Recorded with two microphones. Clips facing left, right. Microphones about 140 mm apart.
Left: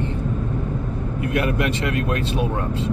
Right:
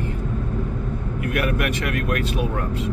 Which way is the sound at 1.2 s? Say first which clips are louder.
Left 1 dB; 25° left (ahead or behind).